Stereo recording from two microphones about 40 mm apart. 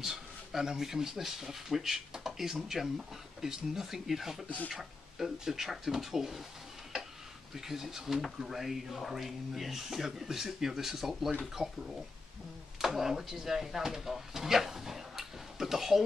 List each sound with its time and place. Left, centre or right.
0.0 s speech: centre
7.5 s speech: centre